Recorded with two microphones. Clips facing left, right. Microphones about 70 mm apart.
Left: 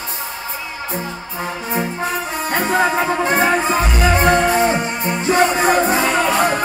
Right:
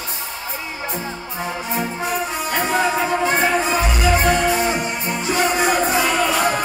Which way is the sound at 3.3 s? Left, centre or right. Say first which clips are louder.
Left 2 dB; left.